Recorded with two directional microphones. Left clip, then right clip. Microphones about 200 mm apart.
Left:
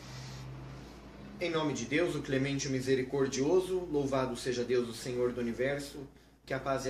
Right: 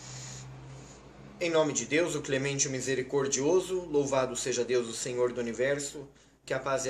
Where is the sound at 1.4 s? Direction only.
10° right (ahead or behind).